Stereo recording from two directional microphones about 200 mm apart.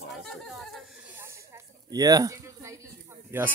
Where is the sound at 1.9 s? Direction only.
20° right (ahead or behind).